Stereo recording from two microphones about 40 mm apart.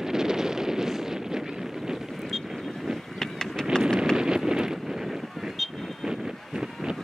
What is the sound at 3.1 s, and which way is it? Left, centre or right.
Vehicle, centre.